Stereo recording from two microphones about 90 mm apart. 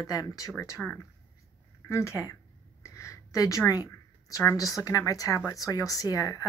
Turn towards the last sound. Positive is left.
turn(degrees=40)  # may be behind; listen again after turning